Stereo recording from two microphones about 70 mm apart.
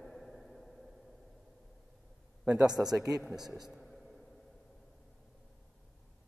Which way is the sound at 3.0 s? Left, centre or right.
Centre.